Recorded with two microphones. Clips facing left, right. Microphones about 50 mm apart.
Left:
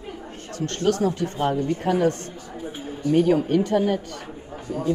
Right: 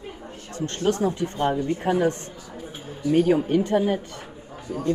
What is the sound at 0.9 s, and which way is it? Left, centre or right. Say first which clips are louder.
Speech: left 1 dB; right.